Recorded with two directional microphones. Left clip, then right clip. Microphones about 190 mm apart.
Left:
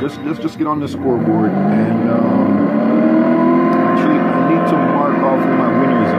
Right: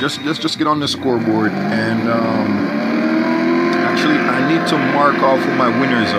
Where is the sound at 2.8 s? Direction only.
35° left (ahead or behind); by 4.9 s 20° left (ahead or behind).